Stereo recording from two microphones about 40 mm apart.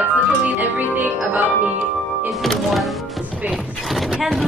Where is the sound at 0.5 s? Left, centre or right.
Right.